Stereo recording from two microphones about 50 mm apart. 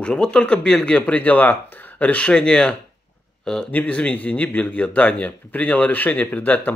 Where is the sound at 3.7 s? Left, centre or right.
Left.